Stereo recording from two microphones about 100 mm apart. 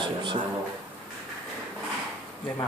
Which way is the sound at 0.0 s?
55° right (ahead or behind).